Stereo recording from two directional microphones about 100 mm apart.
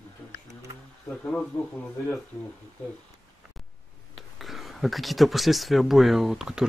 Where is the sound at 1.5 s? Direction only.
30° left (ahead or behind).